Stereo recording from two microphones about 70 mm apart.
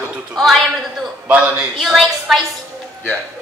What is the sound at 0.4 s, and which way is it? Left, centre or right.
Speech, centre.